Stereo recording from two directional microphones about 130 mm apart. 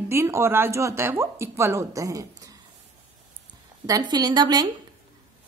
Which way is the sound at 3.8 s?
30° right (ahead or behind).